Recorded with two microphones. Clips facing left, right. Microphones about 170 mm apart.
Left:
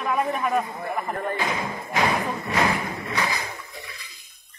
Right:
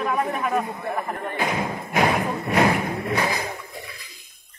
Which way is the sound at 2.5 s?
50° right (ahead or behind).